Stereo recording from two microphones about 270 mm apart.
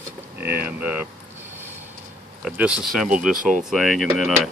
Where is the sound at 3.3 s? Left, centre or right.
Right.